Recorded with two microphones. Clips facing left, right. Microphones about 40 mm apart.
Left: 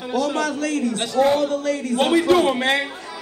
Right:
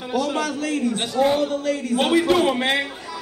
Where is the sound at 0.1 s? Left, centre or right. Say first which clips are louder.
Left 1 dB; centre.